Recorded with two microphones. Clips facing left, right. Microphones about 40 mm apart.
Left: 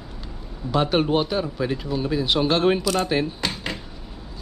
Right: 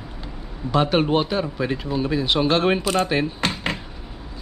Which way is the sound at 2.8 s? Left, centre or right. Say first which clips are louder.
Right 2 dB; right.